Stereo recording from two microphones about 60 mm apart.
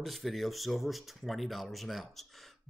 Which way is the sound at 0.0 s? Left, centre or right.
Centre.